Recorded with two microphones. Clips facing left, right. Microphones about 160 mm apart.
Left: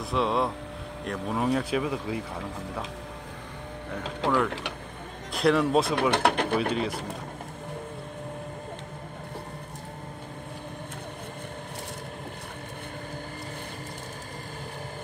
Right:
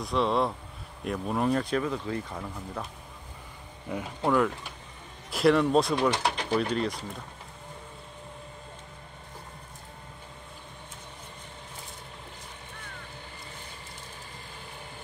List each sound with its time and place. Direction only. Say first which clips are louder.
0.0 s speech: even; centre (ahead or behind)
4.2 s speech: right 1 dB; 90° left
5.3 s speech: right 1 dB; centre (ahead or behind)
5.9 s speech: left 3 dB; 60° left (ahead or behind)
6.7 s speech: left 1 dB; 5° left (ahead or behind)